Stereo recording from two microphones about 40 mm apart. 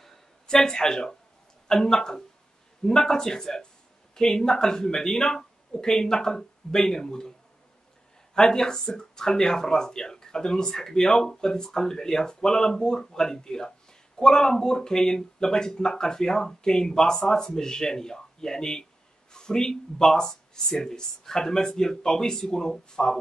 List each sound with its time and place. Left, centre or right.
0.0 s a sound: centre
1.7 s speech: centre
8.4 s speech: centre